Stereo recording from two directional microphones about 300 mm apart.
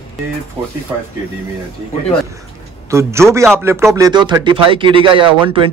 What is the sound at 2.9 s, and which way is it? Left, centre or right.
A man's voice, centre.